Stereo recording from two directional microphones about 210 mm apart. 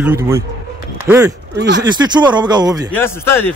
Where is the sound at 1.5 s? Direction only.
55° right (ahead or behind).